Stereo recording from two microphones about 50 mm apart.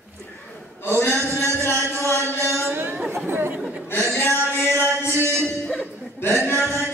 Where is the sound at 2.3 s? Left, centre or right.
Left.